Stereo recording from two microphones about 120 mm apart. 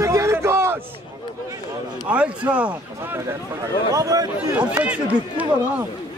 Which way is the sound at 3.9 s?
30° right (ahead or behind).